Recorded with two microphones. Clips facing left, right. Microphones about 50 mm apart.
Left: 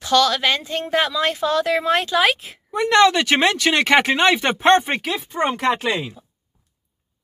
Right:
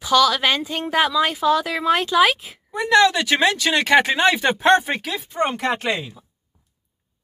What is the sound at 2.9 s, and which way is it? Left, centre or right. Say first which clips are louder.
Speech: left 1 dB; left.